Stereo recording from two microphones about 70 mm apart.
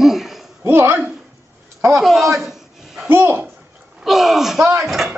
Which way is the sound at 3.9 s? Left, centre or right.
Centre.